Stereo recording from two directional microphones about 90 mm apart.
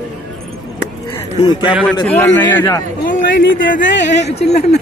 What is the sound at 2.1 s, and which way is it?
Speech, 20° left (ahead or behind).